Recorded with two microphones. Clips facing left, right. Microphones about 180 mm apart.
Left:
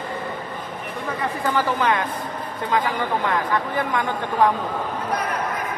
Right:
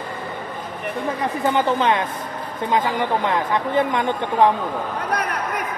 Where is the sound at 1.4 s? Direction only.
20° right (ahead or behind).